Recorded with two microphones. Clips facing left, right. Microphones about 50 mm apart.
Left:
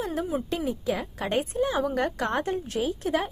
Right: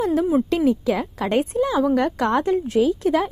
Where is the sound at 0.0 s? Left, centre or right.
Right.